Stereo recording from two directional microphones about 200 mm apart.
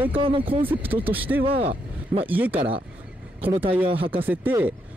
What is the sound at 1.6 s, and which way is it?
Speech, 30° right (ahead or behind).